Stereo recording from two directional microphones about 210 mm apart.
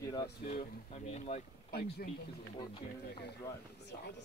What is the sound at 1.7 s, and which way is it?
Speech, 50° left (ahead or behind).